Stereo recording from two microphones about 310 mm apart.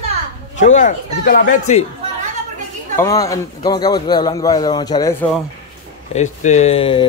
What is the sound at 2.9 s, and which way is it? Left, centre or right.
A man's voice, centre.